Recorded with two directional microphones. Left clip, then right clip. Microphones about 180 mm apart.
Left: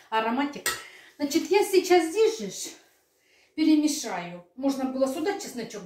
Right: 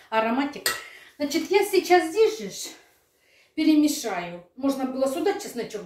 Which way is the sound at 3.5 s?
15° right (ahead or behind).